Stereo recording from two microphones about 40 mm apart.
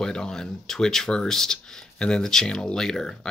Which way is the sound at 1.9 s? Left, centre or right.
Left.